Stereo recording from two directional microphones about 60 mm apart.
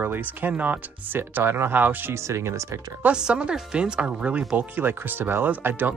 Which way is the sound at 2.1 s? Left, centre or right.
Right.